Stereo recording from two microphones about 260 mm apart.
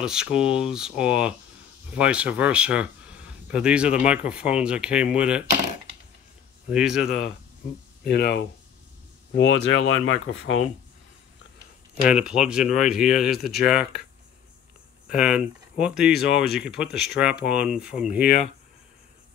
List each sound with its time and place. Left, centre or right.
0.0 s speech: centre
6.7 s speech: centre
8.0 s speech: left
12.1 s speech: centre
13.7 s speech: left
15.0 s speech: centre